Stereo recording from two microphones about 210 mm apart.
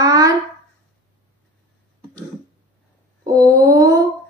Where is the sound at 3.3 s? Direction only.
15° right (ahead or behind).